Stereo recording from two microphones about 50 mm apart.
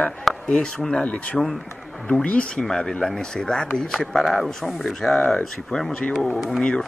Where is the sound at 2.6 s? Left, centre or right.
Centre.